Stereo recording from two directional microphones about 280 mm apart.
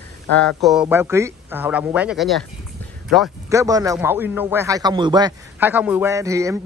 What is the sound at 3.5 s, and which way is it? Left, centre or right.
A man's voice, centre.